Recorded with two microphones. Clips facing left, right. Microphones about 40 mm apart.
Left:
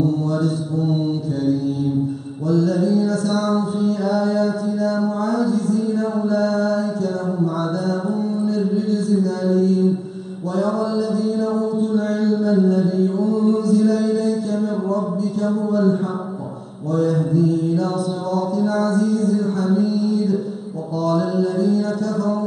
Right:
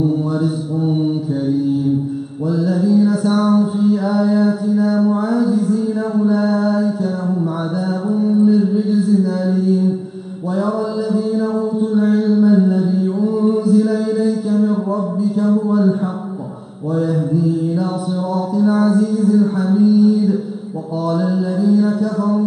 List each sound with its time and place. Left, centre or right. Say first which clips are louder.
0.0 s mantra: right 2 dB; centre
2.4 s mantra: right 1 dB; centre